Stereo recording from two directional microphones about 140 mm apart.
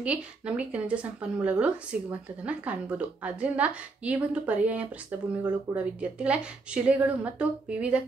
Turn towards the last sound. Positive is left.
turn(degrees=-10)  # may be behind; listen again after turning